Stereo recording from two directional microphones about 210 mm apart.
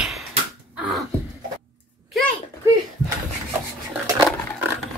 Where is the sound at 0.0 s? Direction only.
Centre (ahead or behind).